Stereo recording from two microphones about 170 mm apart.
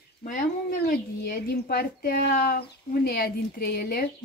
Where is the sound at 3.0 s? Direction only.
70° left (ahead or behind).